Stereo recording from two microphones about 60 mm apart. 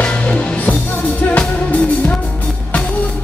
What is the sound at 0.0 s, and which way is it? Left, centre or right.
Music, centre.